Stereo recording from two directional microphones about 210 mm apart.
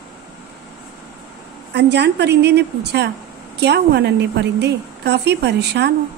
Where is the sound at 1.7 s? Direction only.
55° right (ahead or behind).